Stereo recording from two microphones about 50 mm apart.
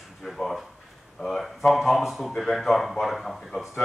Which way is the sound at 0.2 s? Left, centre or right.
Centre.